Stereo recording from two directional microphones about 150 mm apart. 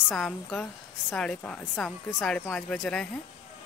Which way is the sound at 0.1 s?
5° left (ahead or behind).